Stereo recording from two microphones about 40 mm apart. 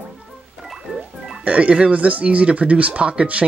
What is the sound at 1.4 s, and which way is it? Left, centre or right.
Speech, right.